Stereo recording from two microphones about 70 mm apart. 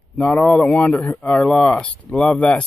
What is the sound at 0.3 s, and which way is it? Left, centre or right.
Speech, centre.